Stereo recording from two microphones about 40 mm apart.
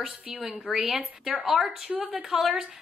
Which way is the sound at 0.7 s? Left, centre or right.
Centre.